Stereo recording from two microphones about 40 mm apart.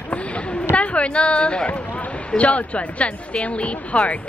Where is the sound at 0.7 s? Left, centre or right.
Left.